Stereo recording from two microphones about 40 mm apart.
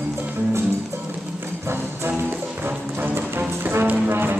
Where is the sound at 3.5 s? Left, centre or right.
Right.